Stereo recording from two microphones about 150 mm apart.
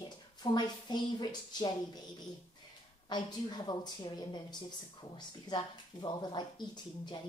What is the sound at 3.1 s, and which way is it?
Speech, 30° left (ahead or behind).